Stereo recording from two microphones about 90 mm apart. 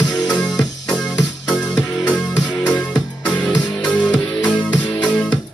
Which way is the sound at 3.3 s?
10° left (ahead or behind).